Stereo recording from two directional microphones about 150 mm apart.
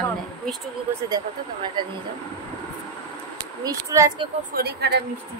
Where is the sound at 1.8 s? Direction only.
30° right (ahead or behind).